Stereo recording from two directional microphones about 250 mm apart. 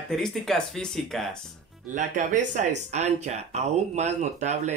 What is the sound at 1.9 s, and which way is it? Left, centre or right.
Speech, right.